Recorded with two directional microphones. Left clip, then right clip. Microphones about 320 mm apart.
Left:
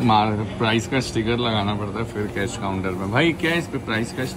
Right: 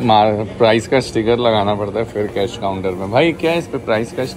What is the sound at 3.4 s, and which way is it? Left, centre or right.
Speech, left.